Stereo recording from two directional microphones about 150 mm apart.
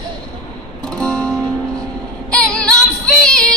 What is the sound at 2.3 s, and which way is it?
Female singing, 5° left (ahead or behind).